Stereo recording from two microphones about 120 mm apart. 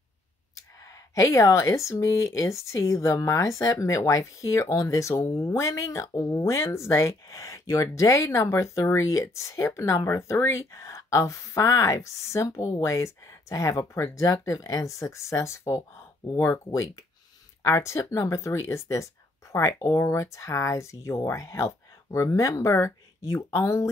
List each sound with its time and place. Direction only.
0.6 s speech: 25° left (ahead or behind)